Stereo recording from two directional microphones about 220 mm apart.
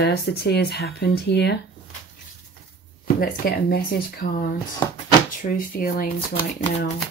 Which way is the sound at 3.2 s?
45° left (ahead or behind).